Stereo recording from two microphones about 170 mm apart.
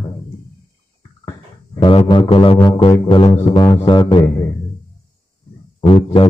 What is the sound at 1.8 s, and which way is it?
A man's voice, 30° left (ahead or behind).